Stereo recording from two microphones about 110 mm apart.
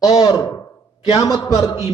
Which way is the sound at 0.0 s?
35° left (ahead or behind).